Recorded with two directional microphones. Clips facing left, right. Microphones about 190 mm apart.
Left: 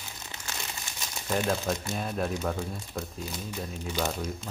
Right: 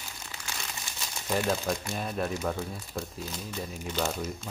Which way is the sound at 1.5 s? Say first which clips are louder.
Left 1 dB; centre (ahead or behind).